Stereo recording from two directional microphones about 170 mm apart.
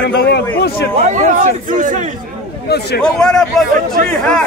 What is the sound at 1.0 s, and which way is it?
Speech, 45° right (ahead or behind).